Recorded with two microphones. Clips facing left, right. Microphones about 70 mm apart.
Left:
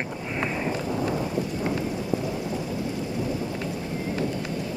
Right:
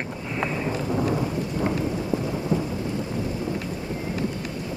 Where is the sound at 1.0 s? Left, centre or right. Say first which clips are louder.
Right 2 dB; centre.